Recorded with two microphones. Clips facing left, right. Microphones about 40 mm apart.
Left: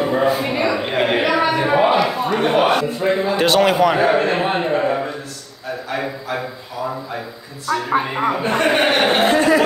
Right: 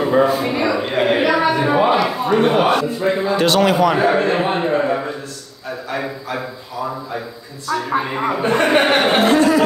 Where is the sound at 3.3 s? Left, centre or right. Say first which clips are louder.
Even; centre.